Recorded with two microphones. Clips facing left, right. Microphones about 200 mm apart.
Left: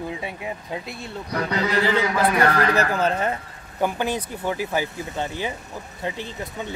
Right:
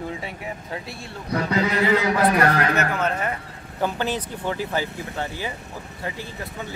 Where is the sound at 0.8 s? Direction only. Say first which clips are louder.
Left 2 dB; 20° left (ahead or behind).